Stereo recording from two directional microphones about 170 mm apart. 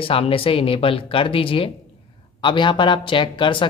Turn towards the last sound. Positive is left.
turn(degrees=30)  # may be behind; listen again after turning